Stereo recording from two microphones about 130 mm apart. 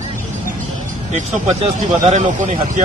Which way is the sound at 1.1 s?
70° right (ahead or behind).